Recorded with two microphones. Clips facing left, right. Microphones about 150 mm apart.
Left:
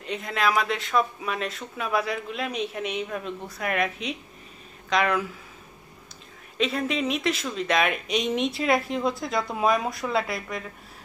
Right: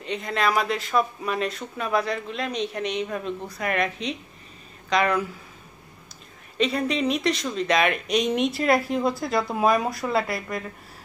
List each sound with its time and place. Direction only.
0.0 s speech: centre (ahead or behind)
6.6 s speech: centre (ahead or behind)